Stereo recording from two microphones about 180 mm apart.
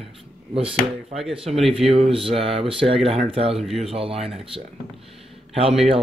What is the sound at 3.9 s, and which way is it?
Speech, 30° right (ahead or behind).